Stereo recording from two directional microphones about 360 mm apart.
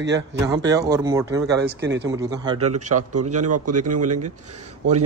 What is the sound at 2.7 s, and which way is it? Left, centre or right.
A man's voice, right.